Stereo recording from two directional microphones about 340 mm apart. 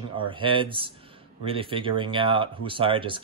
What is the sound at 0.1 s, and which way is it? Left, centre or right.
Speech, centre.